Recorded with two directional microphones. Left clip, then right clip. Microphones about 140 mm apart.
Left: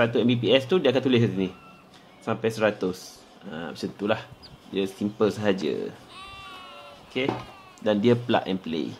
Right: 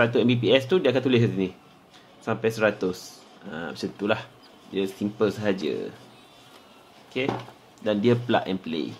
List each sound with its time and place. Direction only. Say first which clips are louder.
0.0 s speech: right 1 dB; centre (ahead or behind); by 5.9 s 20° left (ahead or behind)
7.2 s speech: even; 10° left (ahead or behind)